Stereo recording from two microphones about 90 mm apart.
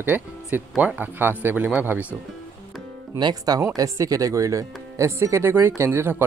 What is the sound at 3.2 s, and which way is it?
Speech, 45° right (ahead or behind).